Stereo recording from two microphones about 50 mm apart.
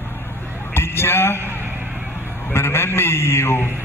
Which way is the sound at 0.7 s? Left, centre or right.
Left.